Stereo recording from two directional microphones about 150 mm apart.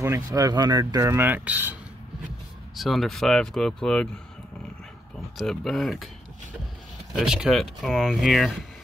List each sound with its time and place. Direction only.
0.0 s speech: 20° right (ahead or behind)
2.7 s speech: centre (ahead or behind)
5.4 s speech: centre (ahead or behind)
7.2 s speech: 5° right (ahead or behind)